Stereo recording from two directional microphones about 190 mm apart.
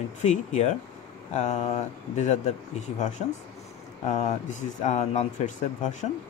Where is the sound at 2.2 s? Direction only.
40° left (ahead or behind).